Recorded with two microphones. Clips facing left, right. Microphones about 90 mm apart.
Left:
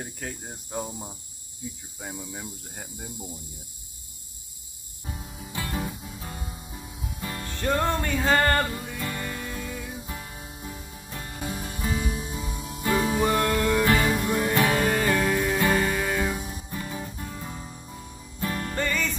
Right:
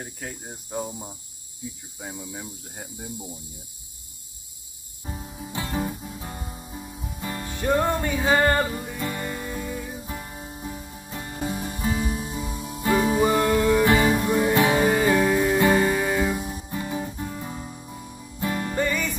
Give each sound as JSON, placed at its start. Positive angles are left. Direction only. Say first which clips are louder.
{"t": 0.0, "sound": "speech", "louder": "even", "side_deg": 0}
{"t": 5.2, "sound": "music", "louder": "right 2 dB", "side_deg": -20}
{"t": 12.4, "sound": "music", "louder": "right 3 dB", "side_deg": -5}
{"t": 16.6, "sound": "music", "louder": "right 5 dB", "side_deg": -20}